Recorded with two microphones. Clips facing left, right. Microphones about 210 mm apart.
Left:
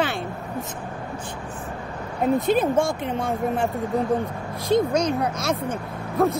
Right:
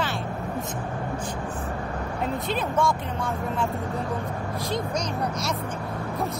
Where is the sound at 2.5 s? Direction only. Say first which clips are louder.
Left 2 dB; 45° left (ahead or behind).